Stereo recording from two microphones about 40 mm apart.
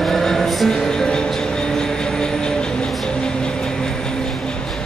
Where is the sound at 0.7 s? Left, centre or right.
Centre.